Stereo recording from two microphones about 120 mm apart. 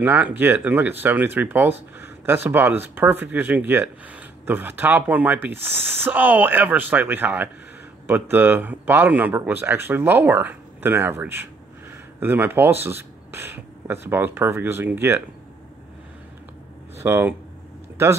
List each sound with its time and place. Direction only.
0.0 s speech: 15° right (ahead or behind)
17.0 s speech: 20° right (ahead or behind)